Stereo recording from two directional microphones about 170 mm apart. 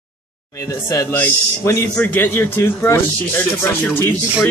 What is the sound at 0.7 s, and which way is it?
Speech, 15° left (ahead or behind).